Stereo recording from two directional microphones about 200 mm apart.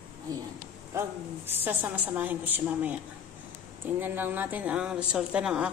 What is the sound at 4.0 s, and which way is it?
A woman's voice, 10° right (ahead or behind).